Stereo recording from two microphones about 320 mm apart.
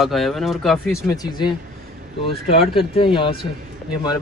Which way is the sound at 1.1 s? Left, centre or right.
Centre.